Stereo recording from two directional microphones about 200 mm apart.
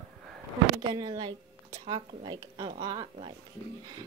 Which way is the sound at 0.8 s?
20° right (ahead or behind).